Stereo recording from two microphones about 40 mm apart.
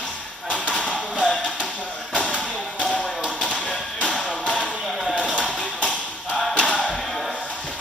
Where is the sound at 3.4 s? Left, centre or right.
Left.